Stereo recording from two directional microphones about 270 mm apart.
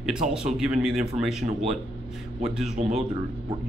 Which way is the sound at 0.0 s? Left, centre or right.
Centre.